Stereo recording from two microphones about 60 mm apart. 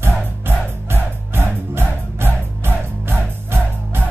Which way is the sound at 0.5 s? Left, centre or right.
Right.